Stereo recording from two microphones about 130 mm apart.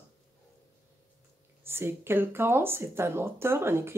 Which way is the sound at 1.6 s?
20° right (ahead or behind).